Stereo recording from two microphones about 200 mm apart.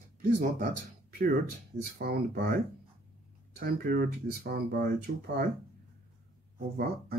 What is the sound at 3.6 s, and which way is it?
Speech, 45° right (ahead or behind).